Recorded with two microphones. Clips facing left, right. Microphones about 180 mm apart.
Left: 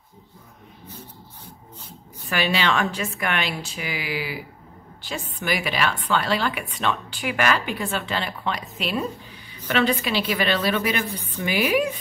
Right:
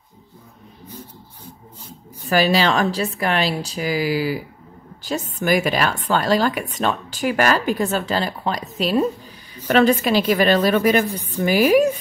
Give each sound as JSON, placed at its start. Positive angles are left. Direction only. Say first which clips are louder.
{"t": 0.8, "sound": "vehicle", "louder": "right 4 dB", "side_deg": -10}
{"t": 2.2, "sound": "a woman's voice", "louder": "right 6 dB", "side_deg": -40}